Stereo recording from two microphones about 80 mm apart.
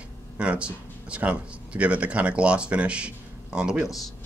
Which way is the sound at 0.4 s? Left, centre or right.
Centre.